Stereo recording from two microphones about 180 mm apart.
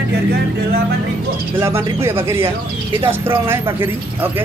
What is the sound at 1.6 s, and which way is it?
Speech, 15° right (ahead or behind).